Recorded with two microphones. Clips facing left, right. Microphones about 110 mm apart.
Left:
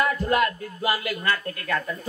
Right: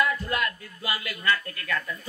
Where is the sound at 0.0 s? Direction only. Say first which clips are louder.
Left 5 dB; 40° left (ahead or behind).